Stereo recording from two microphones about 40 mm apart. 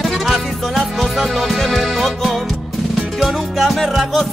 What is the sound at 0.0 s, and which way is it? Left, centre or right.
Music, centre.